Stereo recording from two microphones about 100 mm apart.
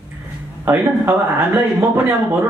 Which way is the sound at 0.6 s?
20° right (ahead or behind).